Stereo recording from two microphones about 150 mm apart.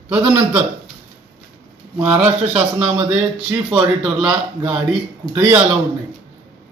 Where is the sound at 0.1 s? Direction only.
10° right (ahead or behind).